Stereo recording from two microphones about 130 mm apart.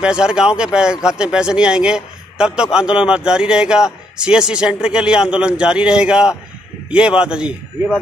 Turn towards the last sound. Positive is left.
turn(degrees=-5)  # may be behind; listen again after turning